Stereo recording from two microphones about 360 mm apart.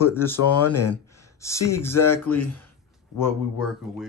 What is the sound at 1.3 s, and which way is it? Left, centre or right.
Speech, centre.